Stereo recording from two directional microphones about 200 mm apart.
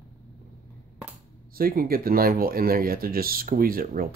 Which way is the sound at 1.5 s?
45° right (ahead or behind).